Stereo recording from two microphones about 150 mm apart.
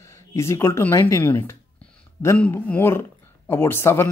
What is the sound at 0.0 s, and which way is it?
Speech, 20° left (ahead or behind).